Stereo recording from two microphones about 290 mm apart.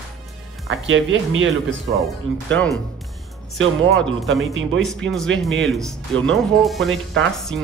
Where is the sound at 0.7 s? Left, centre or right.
Right.